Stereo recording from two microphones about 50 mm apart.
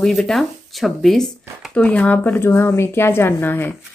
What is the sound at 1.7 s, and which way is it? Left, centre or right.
Speech, left.